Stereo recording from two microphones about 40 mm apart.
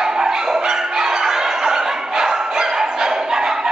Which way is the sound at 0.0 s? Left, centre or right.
Centre.